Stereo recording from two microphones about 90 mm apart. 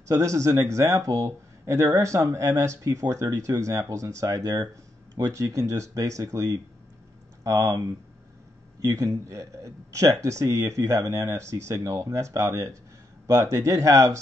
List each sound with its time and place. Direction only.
0.1 s speech: 35° right (ahead or behind)